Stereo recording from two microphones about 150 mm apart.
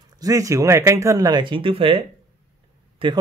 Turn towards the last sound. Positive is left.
turn(degrees=-35)  # may be behind; listen again after turning